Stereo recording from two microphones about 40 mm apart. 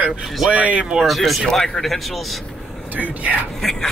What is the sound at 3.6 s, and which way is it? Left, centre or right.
Speech, centre.